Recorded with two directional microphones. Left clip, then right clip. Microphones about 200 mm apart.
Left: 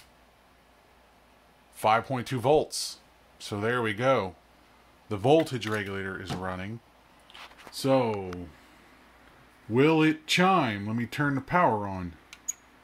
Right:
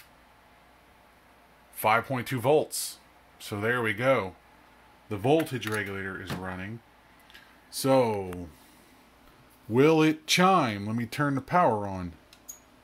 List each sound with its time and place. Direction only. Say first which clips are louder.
1.8 s speech: even; 5° left (ahead or behind)
5.1 s speech: left 2 dB; 20° left (ahead or behind)
7.7 s speech: right 2 dB; centre (ahead or behind)
9.7 s speech: right 1 dB; centre (ahead or behind)